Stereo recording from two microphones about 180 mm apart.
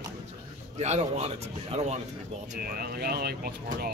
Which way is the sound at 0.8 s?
40° right (ahead or behind).